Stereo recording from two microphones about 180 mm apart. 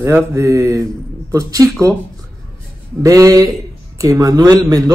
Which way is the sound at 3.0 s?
20° right (ahead or behind).